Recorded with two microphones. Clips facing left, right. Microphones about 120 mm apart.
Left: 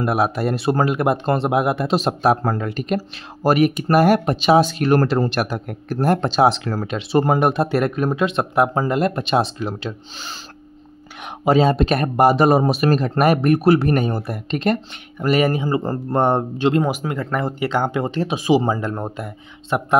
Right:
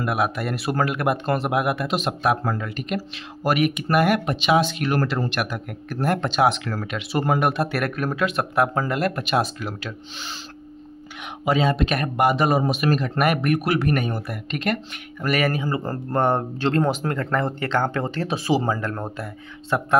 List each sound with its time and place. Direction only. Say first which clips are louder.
0.0 s speech: left 4 dB; 30° left (ahead or behind)
11.4 s speech: left 5 dB; 35° left (ahead or behind); by 20.0 s 20° left (ahead or behind)